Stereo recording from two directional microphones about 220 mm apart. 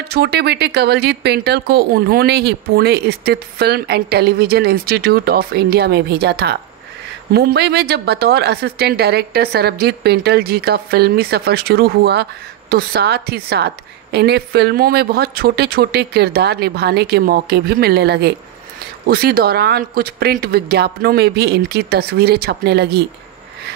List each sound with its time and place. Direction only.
0.1 s a woman's voice: 45° right (ahead or behind)